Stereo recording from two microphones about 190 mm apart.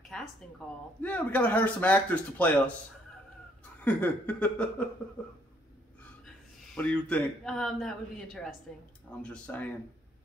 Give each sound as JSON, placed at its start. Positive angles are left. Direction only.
{"t": 0.1, "sound": "a woman's voice", "side_deg": 5}
{"t": 3.8, "sound": "a man's voice", "side_deg": 10}
{"t": 6.2, "sound": "a man's voice", "side_deg": 5}